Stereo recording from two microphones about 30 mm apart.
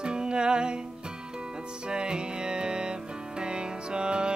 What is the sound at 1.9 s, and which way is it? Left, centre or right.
Music, right.